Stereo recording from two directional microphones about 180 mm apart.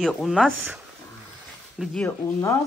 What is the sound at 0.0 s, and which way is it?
Speech, centre (ahead or behind).